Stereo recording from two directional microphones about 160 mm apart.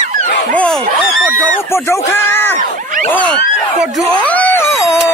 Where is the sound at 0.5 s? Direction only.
5° left (ahead or behind).